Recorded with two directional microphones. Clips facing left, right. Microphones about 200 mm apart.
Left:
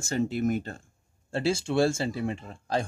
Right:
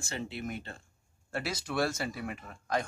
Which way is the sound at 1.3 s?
25° left (ahead or behind).